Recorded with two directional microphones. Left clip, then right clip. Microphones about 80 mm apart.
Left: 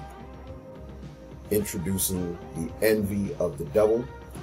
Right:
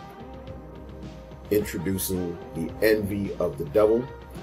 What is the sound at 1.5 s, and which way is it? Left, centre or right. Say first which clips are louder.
Speech: right 3 dB; right.